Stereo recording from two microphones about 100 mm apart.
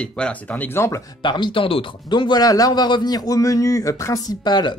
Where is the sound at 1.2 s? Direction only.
50° left (ahead or behind); by 4.3 s 30° left (ahead or behind).